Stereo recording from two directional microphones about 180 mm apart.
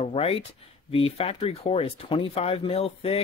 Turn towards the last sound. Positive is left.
turn(degrees=35)  # may be behind; listen again after turning